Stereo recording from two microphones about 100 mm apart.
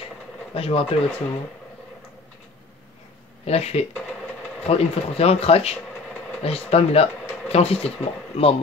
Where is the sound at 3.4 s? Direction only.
90° left.